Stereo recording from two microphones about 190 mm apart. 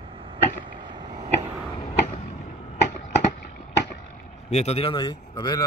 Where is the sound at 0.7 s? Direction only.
25° right (ahead or behind).